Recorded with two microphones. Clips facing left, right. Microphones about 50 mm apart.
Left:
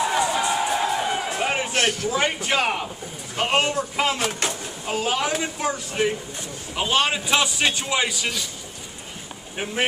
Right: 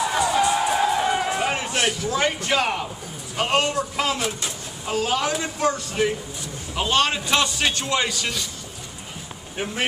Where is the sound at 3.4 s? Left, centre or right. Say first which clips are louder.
Even; centre.